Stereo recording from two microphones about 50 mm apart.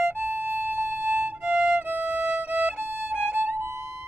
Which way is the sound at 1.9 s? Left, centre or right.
Right.